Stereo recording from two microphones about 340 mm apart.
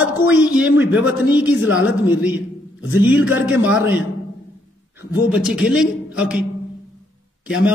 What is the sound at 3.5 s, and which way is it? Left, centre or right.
Speech, centre.